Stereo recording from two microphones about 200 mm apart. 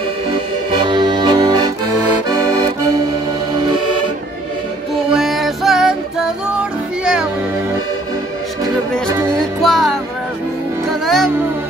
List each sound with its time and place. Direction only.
0.8 s accordion: 20° right (ahead or behind)
5.1 s music: centre (ahead or behind)
8.9 s music: 5° left (ahead or behind)